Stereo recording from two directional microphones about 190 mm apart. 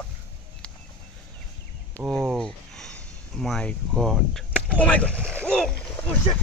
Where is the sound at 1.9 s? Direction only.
Centre (ahead or behind).